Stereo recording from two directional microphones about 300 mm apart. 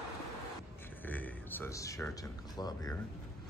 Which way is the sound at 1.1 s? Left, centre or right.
Centre.